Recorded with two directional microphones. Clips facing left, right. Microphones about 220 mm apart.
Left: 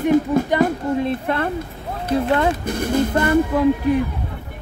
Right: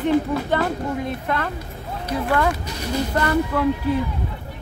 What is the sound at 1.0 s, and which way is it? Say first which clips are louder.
Speech: left 4 dB; 25° left (ahead or behind).